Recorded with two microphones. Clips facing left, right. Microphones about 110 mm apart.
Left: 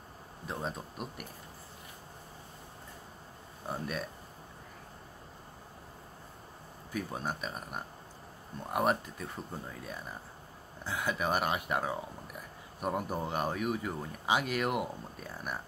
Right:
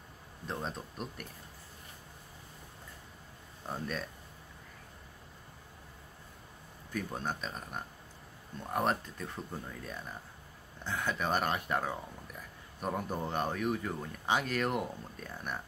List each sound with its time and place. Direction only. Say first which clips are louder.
0.5 s speech: left 1 dB; 5° left (ahead or behind)
3.6 s speech: left 1 dB; 10° left (ahead or behind)
6.9 s speech: even; 10° left (ahead or behind)